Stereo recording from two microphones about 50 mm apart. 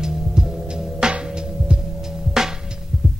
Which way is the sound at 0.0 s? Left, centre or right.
Centre.